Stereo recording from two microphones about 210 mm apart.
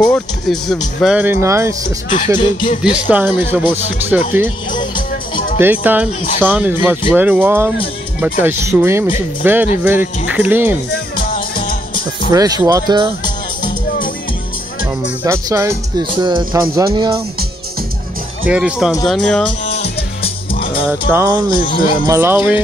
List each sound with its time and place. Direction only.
0.0 s speech: 5° left (ahead or behind)
1.0 s speech: 5° right (ahead or behind)
2.0 s speech: 40° left (ahead or behind)
3.1 s speech: 10° right (ahead or behind)
4.7 s music: 25° left (ahead or behind)
5.6 s speech: 10° right (ahead or behind)
11.5 s music: 40° left (ahead or behind)
12.3 s speech: 15° right (ahead or behind)
15.2 s speech: 15° right (ahead or behind)
18.5 s speech: 5° right (ahead or behind)
21.1 s speech: 15° right (ahead or behind)